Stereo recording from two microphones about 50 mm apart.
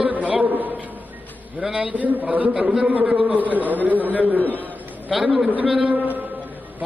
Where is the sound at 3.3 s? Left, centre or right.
Right.